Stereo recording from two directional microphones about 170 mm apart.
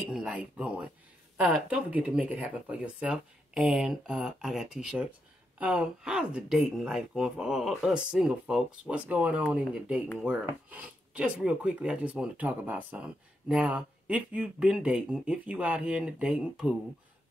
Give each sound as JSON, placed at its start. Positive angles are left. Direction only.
{"t": 0.1, "sound": "speech", "side_deg": -5}